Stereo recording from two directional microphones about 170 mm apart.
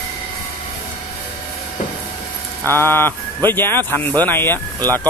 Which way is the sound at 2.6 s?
15° left (ahead or behind).